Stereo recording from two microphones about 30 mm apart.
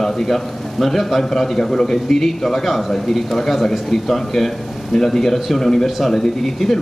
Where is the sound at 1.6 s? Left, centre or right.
Centre.